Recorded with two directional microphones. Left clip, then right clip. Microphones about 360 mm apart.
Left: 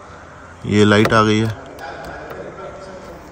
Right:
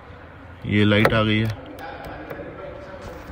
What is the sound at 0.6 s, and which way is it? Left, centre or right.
Speech, centre.